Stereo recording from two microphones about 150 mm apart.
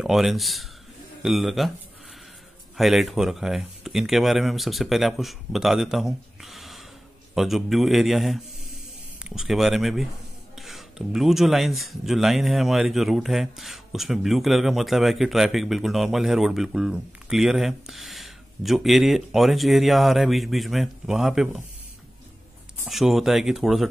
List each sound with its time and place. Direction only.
0.0 s speech: centre (ahead or behind)
2.8 s speech: centre (ahead or behind)
22.8 s speech: centre (ahead or behind)